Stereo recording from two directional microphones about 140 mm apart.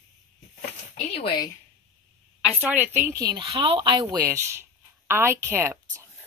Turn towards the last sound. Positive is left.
turn(degrees=-20)  # may be behind; listen again after turning